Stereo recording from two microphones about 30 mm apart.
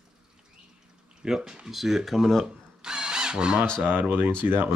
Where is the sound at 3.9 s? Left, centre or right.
Right.